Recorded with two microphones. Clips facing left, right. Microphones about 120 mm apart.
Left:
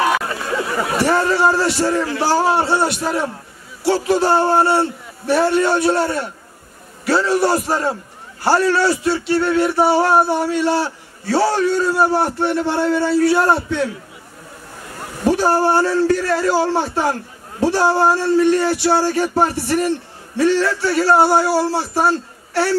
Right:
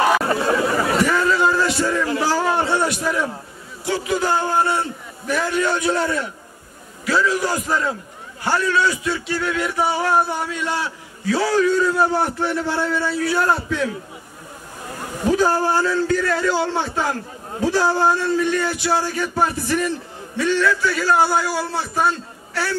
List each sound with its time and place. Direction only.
1.0 s a sound: 30° left (ahead or behind)
2.1 s speech: 30° left (ahead or behind)
15.2 s speech: 30° left (ahead or behind)